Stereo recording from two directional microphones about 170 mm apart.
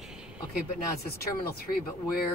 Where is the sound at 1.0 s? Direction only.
60° left (ahead or behind).